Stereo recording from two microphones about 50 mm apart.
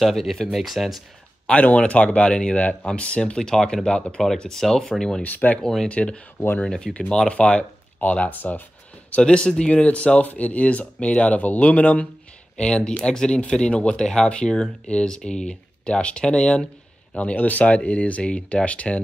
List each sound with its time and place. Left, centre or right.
0.0 s speech: centre
1.5 s speech: left; by 5.2 s centre
5.2 s speech: left
5.6 s speech: centre
5.9 s speech: left
9.1 s speech: left